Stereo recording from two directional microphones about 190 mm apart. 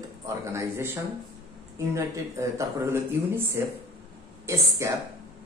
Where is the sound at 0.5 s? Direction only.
15° right (ahead or behind).